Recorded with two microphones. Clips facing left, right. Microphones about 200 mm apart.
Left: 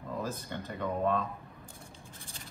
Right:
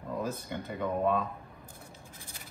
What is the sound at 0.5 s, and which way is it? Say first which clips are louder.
Speech: right 2 dB; 10° right (ahead or behind).